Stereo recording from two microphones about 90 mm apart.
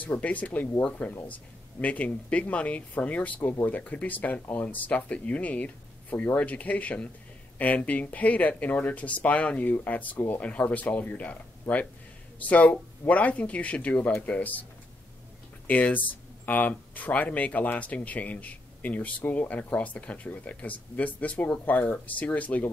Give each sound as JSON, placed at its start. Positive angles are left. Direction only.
{"t": 0.0, "sound": "speech", "side_deg": 15}
{"t": 15.6, "sound": "speech", "side_deg": 20}